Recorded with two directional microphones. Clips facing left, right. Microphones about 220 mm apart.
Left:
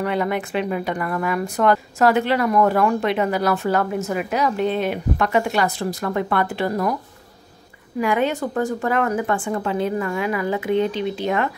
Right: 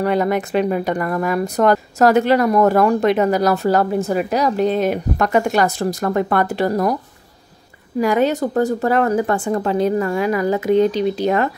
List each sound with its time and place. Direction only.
0.0 s speech: 40° right (ahead or behind)
8.0 s speech: 40° right (ahead or behind)